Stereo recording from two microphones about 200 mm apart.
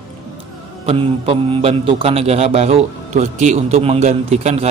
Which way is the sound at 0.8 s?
30° right (ahead or behind).